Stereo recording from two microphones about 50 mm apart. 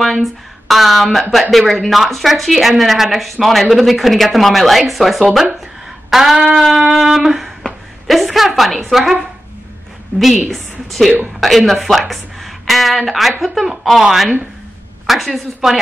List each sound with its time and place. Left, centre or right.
0.0 s speech: centre
10.1 s a woman's voice: centre